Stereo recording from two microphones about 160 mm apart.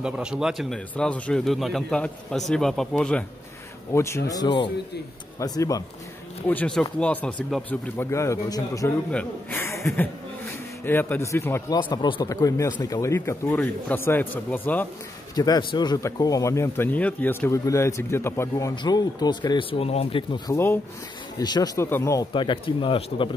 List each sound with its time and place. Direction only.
0.0 s speech: 5° right (ahead or behind)
3.9 s speech: 15° left (ahead or behind)
6.4 s speech: 10° left (ahead or behind)
8.1 s speech: 20° left (ahead or behind)
9.1 s speech: 10° left (ahead or behind)
11.8 s speech: 30° left (ahead or behind); by 14.9 s 10° left (ahead or behind)
15.3 s speech: 25° left (ahead or behind)
20.5 s speech: 15° left (ahead or behind)
21.4 s speech: 25° left (ahead or behind)
22.3 s speech: 30° left (ahead or behind)